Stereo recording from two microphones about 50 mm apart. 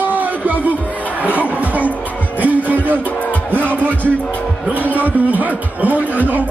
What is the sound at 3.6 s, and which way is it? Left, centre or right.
Music, left.